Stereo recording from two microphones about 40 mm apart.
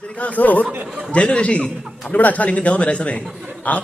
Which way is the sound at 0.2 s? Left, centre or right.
Left.